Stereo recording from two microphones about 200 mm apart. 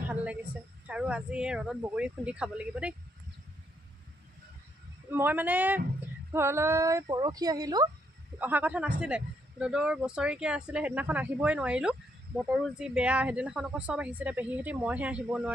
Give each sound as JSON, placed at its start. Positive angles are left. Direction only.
{"t": 0.1, "sound": "speech", "side_deg": -5}
{"t": 5.1, "sound": "speech", "side_deg": -10}